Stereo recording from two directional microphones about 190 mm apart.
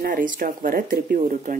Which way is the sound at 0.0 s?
45° right (ahead or behind).